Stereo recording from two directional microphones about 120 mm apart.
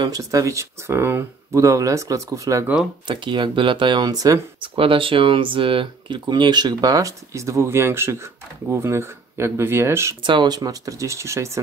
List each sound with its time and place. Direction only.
0.0 s speech: 30° right (ahead or behind)
2.6 s speech: 5° right (ahead or behind)
3.1 s speech: 40° right (ahead or behind)
4.6 s speech: 45° right (ahead or behind); by 10.1 s 20° right (ahead or behind)
10.2 s speech: 40° right (ahead or behind); by 11.6 s 25° right (ahead or behind)